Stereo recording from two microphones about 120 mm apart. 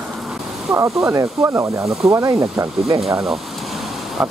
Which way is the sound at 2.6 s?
Centre (ahead or behind).